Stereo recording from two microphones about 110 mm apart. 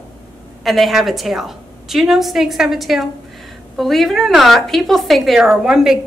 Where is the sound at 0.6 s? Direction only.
Centre (ahead or behind).